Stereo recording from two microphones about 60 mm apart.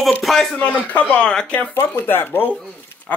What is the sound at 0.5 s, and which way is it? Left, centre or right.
Speech, left.